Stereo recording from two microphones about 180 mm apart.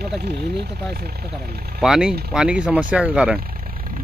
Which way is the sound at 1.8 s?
5° right (ahead or behind).